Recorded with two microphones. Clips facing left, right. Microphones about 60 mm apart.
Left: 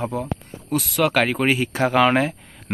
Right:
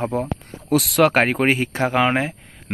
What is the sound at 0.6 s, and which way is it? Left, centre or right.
Speech, right.